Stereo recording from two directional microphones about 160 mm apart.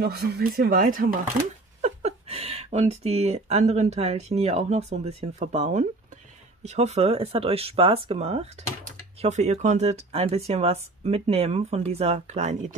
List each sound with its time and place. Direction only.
0.0 s speech: 80° right; by 1.3 s 60° right (ahead or behind)
1.8 s speech: 45° right (ahead or behind)